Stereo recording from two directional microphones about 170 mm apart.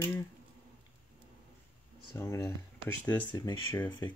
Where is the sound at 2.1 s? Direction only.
20° left (ahead or behind).